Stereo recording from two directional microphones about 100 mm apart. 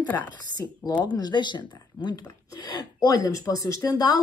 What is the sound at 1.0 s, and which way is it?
Speech, 45° left (ahead or behind).